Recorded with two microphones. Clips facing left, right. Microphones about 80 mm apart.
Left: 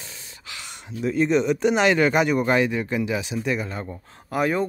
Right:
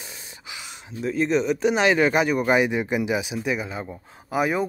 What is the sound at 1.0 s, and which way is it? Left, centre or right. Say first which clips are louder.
Speech: left 2 dB; centre.